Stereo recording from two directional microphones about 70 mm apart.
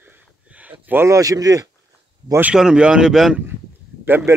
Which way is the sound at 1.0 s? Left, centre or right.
Right.